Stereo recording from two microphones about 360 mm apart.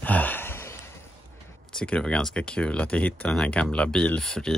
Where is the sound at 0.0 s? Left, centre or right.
Centre.